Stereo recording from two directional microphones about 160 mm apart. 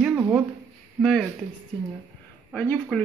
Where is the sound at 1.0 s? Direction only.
Centre (ahead or behind).